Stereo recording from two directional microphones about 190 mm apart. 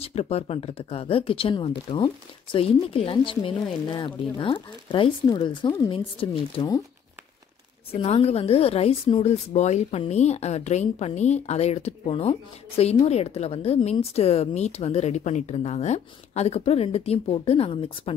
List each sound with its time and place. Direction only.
0.0 s speech: 30° left (ahead or behind)
7.9 s a woman's voice: 30° left (ahead or behind)